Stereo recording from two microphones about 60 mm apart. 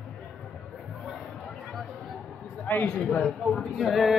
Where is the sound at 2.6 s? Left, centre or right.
Left.